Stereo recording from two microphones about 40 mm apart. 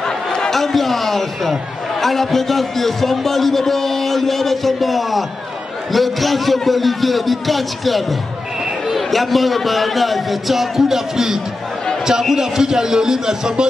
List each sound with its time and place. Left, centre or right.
0.0 s chatter: centre
0.5 s a man's voice: centre